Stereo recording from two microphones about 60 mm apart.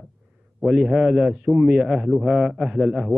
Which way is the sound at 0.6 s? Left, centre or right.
Centre.